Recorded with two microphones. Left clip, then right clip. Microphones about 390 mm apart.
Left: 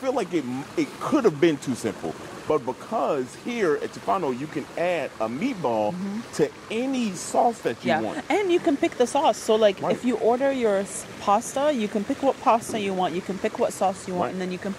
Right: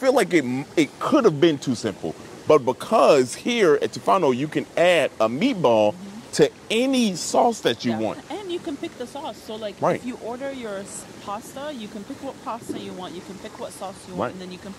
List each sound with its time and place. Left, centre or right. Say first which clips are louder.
0.0 s speech: right 7 dB; right
2.4 s speech: right 7 dB; right
8.3 s speech: left 8 dB; left